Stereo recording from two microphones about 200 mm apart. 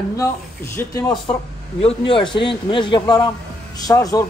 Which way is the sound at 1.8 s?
30° left (ahead or behind).